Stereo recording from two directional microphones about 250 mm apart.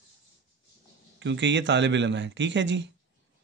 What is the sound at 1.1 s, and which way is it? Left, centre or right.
A man's voice, right.